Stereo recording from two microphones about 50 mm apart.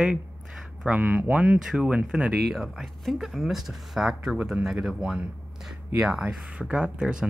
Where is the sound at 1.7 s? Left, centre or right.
Right.